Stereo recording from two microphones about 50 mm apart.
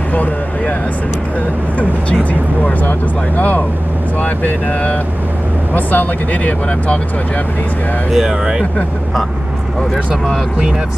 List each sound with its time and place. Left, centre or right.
2.6 s speech: left
8.1 s speech: centre